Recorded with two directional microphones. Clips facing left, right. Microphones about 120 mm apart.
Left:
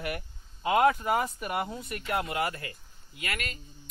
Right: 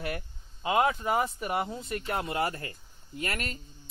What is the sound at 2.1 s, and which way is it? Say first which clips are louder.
Speech: left 1 dB; 30° right (ahead or behind).